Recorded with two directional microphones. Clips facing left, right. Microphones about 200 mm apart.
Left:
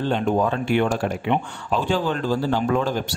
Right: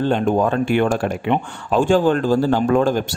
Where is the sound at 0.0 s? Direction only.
50° right (ahead or behind).